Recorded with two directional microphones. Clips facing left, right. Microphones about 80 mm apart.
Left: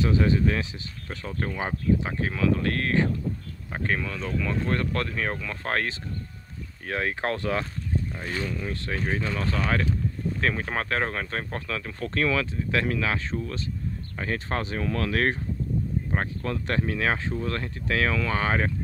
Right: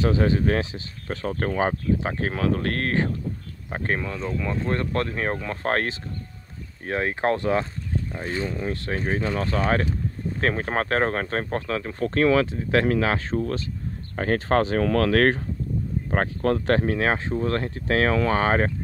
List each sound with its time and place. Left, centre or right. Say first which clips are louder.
0.0 s speech: right 2 dB; right
1.2 s speech: right 7 dB; right
3.7 s speech: right 2 dB; right
6.9 s speech: right 4 dB; right